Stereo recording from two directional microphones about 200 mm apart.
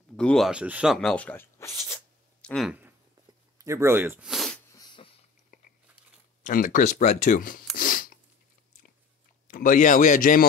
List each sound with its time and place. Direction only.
0.1 s speech: 5° left (ahead or behind)
3.5 s speech: 15° right (ahead or behind)
4.3 s sneeze: centre (ahead or behind)
4.7 s a sound: 25° left (ahead or behind)
5.5 s biting: 40° left (ahead or behind)
6.4 s speech: 45° left (ahead or behind)
7.7 s a sound: 45° left (ahead or behind)
9.5 s a man's voice: 40° left (ahead or behind)